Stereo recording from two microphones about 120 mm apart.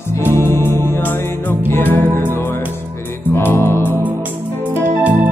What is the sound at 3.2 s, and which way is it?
Music, 20° left (ahead or behind).